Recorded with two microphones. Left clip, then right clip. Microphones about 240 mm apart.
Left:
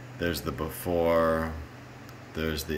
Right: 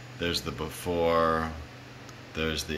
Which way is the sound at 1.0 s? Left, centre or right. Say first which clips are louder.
Even; centre.